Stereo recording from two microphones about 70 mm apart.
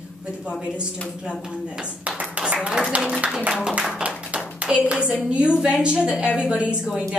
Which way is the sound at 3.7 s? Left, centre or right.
Centre.